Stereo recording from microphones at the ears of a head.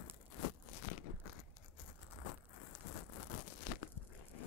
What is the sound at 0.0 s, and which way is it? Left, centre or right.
Tearing, left.